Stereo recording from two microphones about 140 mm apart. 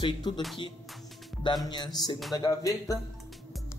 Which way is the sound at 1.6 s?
30° left (ahead or behind).